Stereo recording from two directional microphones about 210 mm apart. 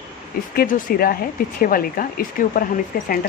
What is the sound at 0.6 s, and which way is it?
Speech, 40° left (ahead or behind).